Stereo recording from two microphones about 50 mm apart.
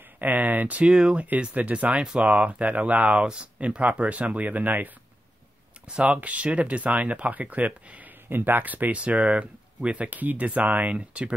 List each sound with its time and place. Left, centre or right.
0.2 s speech: right
0.8 s speech: centre
1.1 s speech: right
5.9 s speech: right
8.3 s speech: right